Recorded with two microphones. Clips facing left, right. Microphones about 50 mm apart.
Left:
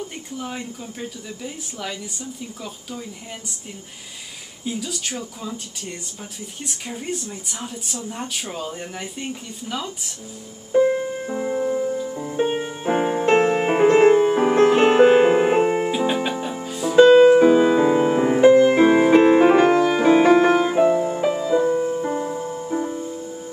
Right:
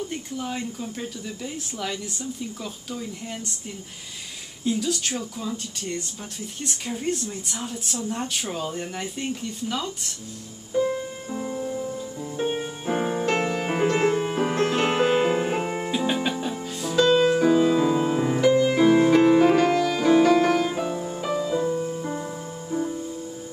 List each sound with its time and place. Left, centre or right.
0.0 s speech: centre
4.6 s speech: centre
10.7 s music: left; by 16.9 s centre
16.9 s music: left